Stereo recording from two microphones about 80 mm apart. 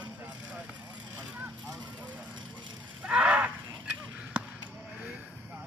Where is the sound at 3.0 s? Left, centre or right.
Centre.